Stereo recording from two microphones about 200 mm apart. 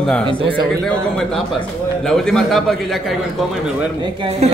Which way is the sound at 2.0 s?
5° left (ahead or behind).